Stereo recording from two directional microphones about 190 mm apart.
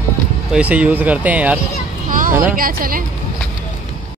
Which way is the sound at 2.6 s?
50° right (ahead or behind).